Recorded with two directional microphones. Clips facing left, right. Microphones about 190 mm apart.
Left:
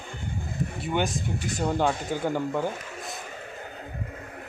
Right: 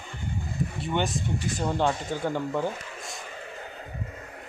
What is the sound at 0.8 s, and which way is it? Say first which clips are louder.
Speech: left 1 dB; centre (ahead or behind).